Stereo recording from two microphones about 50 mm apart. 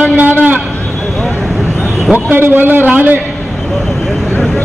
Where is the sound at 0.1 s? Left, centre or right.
Right.